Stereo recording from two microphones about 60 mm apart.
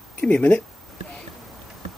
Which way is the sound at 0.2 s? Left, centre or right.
Left.